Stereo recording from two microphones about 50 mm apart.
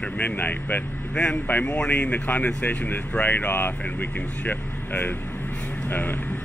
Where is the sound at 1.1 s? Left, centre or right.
Left.